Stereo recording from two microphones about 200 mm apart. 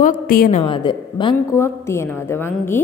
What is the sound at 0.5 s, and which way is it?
A woman's voice, 25° left (ahead or behind).